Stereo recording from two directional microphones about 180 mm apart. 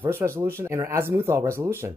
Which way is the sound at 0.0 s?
15° right (ahead or behind).